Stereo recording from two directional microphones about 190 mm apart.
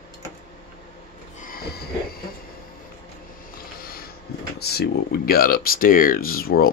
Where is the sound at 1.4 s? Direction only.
50° left (ahead or behind).